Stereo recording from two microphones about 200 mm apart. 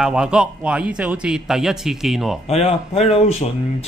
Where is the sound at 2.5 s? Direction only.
30° left (ahead or behind).